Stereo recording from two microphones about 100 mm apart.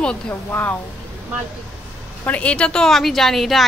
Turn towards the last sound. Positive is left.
turn(degrees=0)  # may be behind; listen again after turning